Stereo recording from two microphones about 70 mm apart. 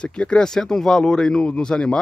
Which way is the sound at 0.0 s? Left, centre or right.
Centre.